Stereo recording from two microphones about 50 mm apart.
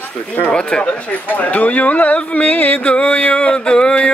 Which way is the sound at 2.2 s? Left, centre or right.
Left.